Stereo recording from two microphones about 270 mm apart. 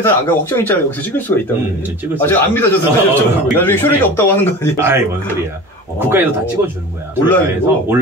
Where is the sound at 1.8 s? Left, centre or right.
Centre.